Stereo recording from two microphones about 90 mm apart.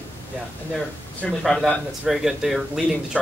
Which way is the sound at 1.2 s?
5° left (ahead or behind).